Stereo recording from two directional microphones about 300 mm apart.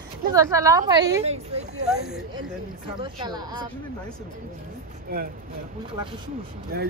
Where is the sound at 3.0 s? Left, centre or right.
Centre.